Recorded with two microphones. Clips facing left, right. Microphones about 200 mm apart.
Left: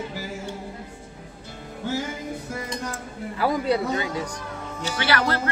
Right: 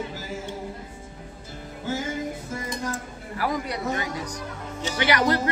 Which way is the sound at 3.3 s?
25° left (ahead or behind).